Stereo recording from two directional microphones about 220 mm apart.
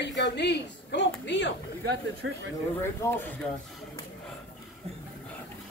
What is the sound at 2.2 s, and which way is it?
Speech, 55° right (ahead or behind).